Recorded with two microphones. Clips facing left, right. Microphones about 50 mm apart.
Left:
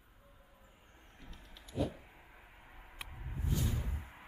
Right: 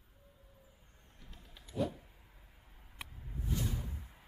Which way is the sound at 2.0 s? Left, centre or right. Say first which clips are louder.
Left 5 dB; left.